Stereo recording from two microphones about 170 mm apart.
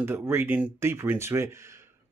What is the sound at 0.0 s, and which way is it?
Speech, 15° right (ahead or behind).